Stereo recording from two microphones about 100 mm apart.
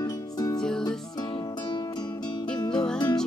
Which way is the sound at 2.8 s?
45° left (ahead or behind).